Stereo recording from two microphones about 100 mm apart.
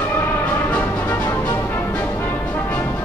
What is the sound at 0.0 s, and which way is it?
Music, 20° left (ahead or behind).